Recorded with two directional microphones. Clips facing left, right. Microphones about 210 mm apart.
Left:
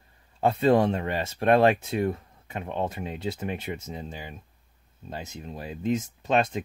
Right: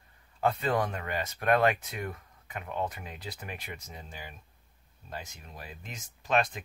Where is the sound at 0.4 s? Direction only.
25° left (ahead or behind).